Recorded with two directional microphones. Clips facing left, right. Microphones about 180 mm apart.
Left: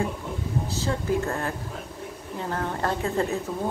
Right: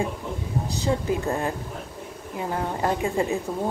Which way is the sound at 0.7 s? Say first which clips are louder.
Right 3 dB; 15° right (ahead or behind).